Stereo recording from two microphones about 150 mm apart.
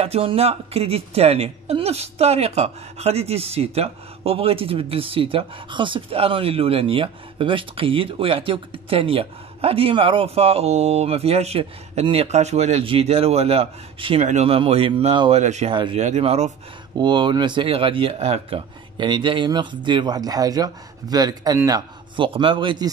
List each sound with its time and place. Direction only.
0.0 s a woman's voice: 40° right (ahead or behind)
14.2 s a woman's voice: 45° right (ahead or behind)
15.3 s speech: 50° right (ahead or behind)
15.7 s a woman's voice: 35° right (ahead or behind)
16.0 s speech: 45° right (ahead or behind)
17.0 s a woman's voice: 30° right (ahead or behind)